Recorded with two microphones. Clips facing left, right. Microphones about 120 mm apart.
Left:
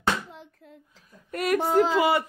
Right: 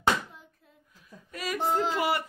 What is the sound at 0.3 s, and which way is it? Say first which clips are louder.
Speech: left 8 dB; 75° left (ahead or behind).